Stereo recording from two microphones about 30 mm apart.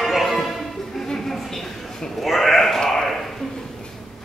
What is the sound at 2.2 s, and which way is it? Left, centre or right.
Sheep, centre.